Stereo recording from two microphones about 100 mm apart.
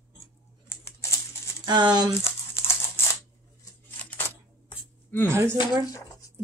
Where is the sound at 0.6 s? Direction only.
25° left (ahead or behind).